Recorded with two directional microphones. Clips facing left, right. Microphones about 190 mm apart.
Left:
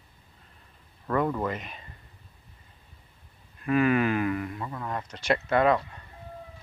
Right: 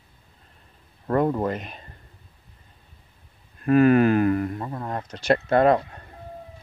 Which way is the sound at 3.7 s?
40° right (ahead or behind).